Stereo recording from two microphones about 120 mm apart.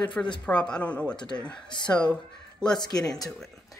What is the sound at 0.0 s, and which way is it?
Speech, 10° left (ahead or behind).